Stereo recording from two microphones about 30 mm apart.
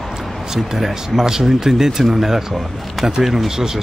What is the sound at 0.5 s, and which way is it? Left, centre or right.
Speech, centre.